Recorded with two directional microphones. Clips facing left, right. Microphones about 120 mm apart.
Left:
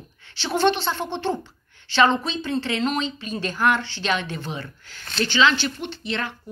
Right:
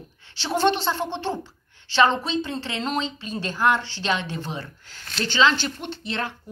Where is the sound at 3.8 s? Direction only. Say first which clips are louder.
Left 1 dB; 35° right (ahead or behind).